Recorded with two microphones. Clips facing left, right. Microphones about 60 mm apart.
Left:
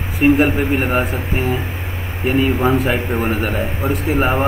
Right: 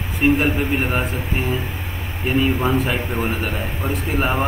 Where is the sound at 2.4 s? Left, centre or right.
Centre.